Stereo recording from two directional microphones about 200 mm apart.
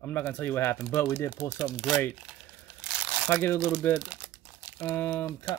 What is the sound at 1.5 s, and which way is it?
Speech, 5° right (ahead or behind).